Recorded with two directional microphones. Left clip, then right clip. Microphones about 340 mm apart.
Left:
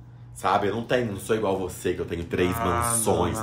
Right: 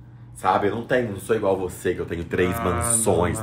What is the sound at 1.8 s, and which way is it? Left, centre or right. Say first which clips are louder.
Speech: right 3 dB; centre.